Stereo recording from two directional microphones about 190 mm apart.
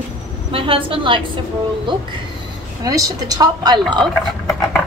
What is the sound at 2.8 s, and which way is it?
A woman's voice, 20° right (ahead or behind).